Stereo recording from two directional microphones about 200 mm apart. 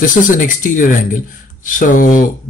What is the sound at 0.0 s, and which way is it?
A man's voice, 40° left (ahead or behind).